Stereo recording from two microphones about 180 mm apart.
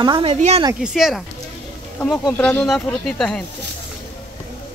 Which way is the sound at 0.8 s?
Centre (ahead or behind).